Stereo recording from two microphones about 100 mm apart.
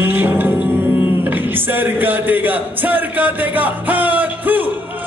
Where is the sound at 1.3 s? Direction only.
20° right (ahead or behind).